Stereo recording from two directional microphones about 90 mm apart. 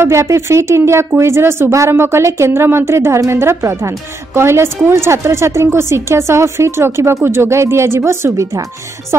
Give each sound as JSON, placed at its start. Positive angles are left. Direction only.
{"t": 0.0, "sound": "a woman's voice", "side_deg": -35}